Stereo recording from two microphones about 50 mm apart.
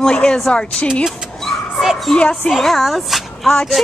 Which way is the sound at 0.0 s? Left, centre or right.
Centre.